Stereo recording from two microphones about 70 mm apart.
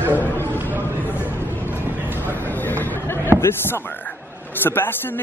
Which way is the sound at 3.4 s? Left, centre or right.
Left.